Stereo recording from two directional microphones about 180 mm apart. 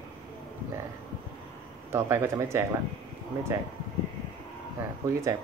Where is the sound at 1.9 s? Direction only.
15° right (ahead or behind).